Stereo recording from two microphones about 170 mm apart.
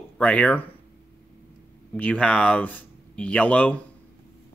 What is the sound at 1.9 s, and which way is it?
Speech, 5° left (ahead or behind).